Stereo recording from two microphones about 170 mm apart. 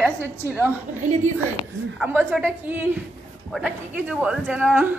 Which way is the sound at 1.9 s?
10° right (ahead or behind).